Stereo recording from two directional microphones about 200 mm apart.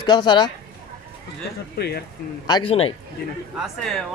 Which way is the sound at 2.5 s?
25° left (ahead or behind).